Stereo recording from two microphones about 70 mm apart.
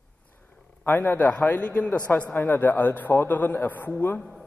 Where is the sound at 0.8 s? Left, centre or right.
Left.